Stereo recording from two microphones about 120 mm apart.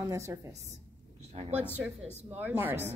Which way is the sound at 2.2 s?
15° right (ahead or behind).